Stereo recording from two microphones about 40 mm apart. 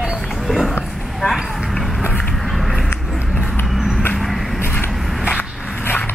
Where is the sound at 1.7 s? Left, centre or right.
Centre.